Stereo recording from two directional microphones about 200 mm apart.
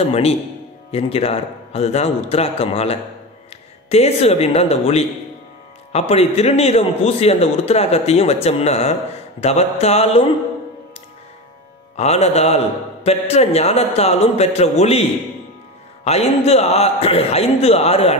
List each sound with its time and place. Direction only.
0.0 s a man's voice: 30° left (ahead or behind)
12.0 s a man's voice: 35° left (ahead or behind)